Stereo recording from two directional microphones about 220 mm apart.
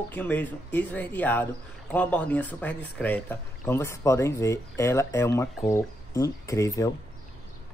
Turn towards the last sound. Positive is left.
turn(degrees=15)  # may be behind; listen again after turning